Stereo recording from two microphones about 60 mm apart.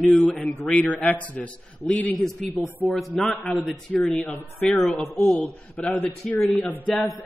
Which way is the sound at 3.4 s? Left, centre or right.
Left.